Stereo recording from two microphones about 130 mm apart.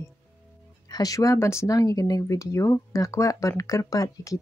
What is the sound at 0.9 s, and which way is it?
Speech, 30° left (ahead or behind).